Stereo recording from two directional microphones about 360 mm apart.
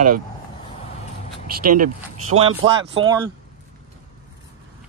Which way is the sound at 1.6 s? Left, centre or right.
Right.